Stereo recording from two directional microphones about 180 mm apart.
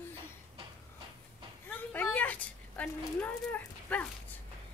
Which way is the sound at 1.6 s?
10° left (ahead or behind).